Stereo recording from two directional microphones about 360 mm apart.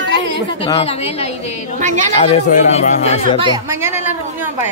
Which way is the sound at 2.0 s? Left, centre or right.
Centre.